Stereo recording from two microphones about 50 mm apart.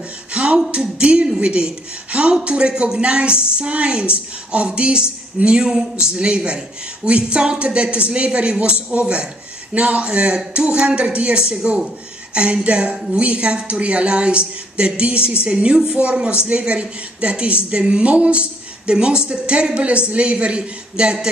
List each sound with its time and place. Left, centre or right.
0.3 s a woman's voice: right